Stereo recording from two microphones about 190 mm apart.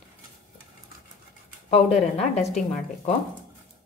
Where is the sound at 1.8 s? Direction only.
Centre (ahead or behind).